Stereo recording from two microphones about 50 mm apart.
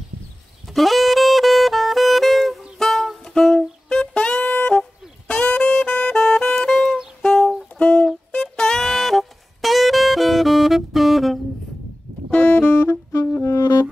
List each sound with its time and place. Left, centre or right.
0.7 s saxophone: centre
2.8 s music: centre
4.0 s saxophone: centre
5.3 s music: centre
8.3 s saxophone: centre
12.3 s brass instrument: left